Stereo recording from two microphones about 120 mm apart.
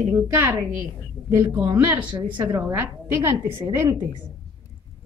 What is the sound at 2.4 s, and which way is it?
A woman's voice, 30° right (ahead or behind).